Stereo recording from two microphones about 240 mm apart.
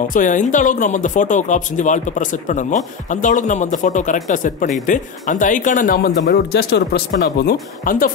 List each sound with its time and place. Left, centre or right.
0.1 s speech: left